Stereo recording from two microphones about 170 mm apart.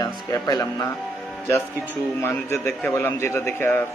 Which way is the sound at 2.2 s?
15° left (ahead or behind).